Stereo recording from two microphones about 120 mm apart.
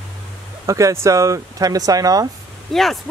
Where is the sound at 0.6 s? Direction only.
25° right (ahead or behind).